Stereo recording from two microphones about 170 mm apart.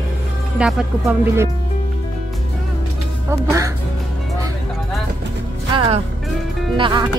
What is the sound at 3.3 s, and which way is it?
Speech, 20° right (ahead or behind).